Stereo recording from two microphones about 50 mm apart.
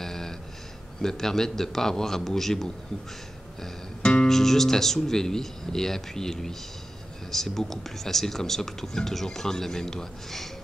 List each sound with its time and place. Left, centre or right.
0.0 s a sound: centre
1.0 s speech: centre
4.0 s music: centre
4.3 s speech: centre